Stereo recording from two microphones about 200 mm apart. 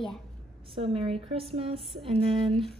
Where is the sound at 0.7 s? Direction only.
30° right (ahead or behind).